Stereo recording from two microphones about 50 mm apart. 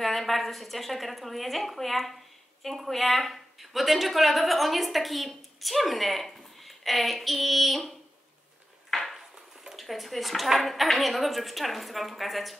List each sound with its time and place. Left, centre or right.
0.0 s a woman's voice: centre
8.9 s dishes: centre
9.8 s a woman's voice: centre